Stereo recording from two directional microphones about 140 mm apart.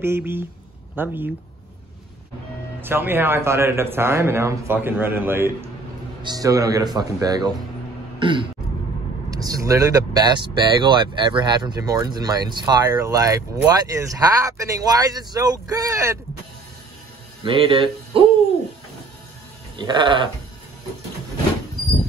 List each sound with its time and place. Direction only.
0.0 s speech: 15° right (ahead or behind)
2.8 s speech: 15° right (ahead or behind)
8.2 s throat clearing: 35° right (ahead or behind)
9.3 s speech: 25° right (ahead or behind)
17.4 s a sound: 35° right (ahead or behind)
19.8 s sheep: 35° right (ahead or behind)